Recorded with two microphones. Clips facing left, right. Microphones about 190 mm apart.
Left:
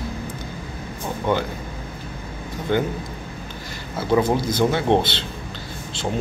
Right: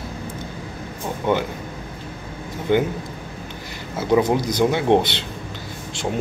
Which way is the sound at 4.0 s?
20° right (ahead or behind).